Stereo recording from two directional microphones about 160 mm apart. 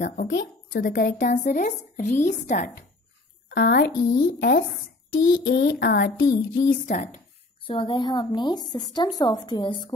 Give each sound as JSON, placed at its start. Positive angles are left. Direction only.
{"t": 0.0, "sound": "speech", "side_deg": 60}
{"t": 2.5, "sound": "speech", "side_deg": 70}
{"t": 3.4, "sound": "a woman's voice", "side_deg": 85}
{"t": 4.0, "sound": "speech", "side_deg": 55}
{"t": 5.1, "sound": "a sound", "side_deg": 75}
{"t": 6.7, "sound": "speech", "side_deg": 60}
{"t": 7.6, "sound": "a woman's voice", "side_deg": 30}